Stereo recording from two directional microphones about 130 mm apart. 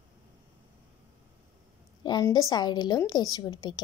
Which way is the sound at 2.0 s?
35° left (ahead or behind).